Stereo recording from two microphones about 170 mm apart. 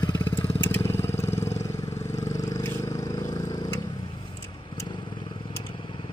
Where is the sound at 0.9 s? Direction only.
15° left (ahead or behind).